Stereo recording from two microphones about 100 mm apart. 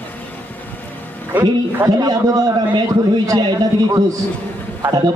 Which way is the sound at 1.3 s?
20° right (ahead or behind).